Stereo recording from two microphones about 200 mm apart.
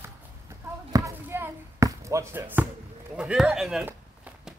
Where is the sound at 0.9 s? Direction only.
15° right (ahead or behind).